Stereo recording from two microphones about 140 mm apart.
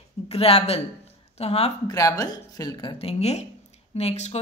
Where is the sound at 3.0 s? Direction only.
45° left (ahead or behind).